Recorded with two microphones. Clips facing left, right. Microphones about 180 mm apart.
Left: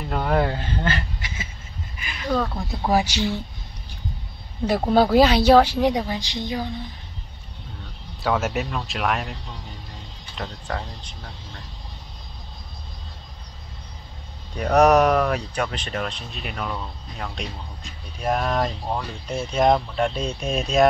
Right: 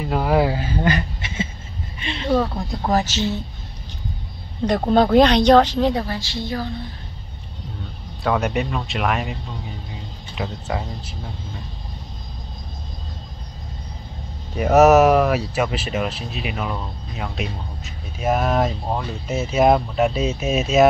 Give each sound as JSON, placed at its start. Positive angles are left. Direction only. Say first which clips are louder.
{"t": 0.0, "sound": "a sound", "louder": "right 3 dB", "side_deg": -5}
{"t": 2.3, "sound": "speech", "louder": "right 4 dB", "side_deg": -5}
{"t": 4.6, "sound": "speech", "louder": "right 2 dB", "side_deg": 5}
{"t": 8.2, "sound": "speech", "louder": "right 2 dB", "side_deg": 0}
{"t": 14.5, "sound": "speech", "louder": "right 4 dB", "side_deg": -5}